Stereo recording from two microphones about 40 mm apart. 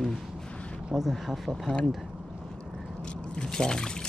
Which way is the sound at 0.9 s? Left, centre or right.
Centre.